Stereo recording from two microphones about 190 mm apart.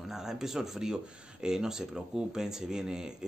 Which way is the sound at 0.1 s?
Centre (ahead or behind).